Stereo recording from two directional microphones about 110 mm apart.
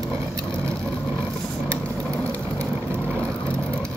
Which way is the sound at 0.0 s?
25° right (ahead or behind).